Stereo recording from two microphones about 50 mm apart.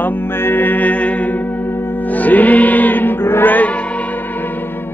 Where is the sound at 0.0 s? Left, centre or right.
Left.